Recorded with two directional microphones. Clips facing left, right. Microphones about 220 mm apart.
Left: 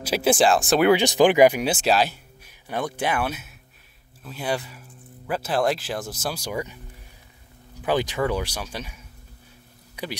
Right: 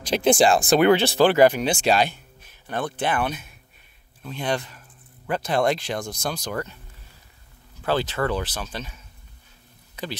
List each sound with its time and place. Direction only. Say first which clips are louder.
0.0 s speech: right 1 dB; 5° left (ahead or behind)
7.8 s speech: left 1 dB; 15° left (ahead or behind)